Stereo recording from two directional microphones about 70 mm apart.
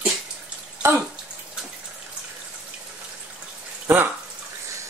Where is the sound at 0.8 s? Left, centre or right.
Right.